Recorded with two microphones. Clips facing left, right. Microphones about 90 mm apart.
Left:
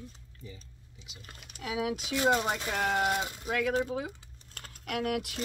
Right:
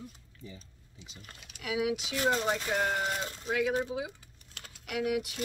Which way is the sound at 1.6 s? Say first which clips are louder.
Right 1 dB; 35° left (ahead or behind).